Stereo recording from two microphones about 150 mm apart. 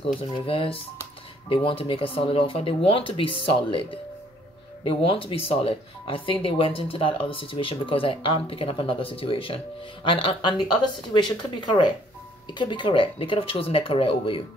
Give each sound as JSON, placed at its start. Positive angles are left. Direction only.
{"t": 0.0, "sound": "speech", "side_deg": 35}
{"t": 4.8, "sound": "speech", "side_deg": 35}